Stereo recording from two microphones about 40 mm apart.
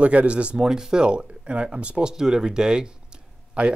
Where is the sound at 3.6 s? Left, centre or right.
Right.